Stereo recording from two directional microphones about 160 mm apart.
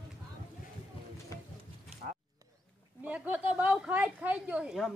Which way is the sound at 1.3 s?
20° left (ahead or behind).